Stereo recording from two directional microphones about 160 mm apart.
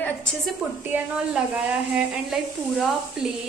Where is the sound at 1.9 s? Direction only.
Centre (ahead or behind).